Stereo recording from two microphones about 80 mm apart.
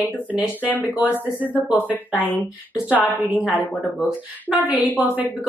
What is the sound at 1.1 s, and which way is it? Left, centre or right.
Speech, left.